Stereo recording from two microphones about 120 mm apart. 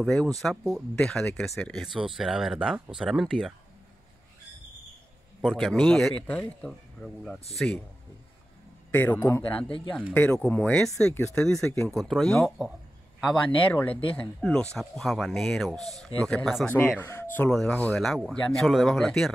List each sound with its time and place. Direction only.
0.0 s speech: 5° left (ahead or behind)
5.6 s speech: 5° left (ahead or behind)
8.9 s speech: 15° left (ahead or behind)
17.0 s speech: 20° left (ahead or behind)
17.5 s speech: 5° left (ahead or behind)